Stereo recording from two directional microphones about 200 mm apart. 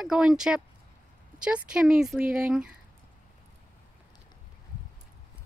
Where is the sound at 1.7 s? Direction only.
5° right (ahead or behind).